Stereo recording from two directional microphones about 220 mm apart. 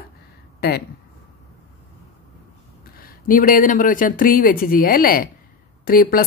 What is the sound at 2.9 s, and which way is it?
A woman's voice, 40° left (ahead or behind).